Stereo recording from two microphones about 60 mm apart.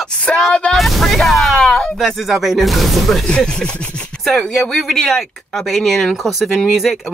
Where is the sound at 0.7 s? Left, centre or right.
Centre.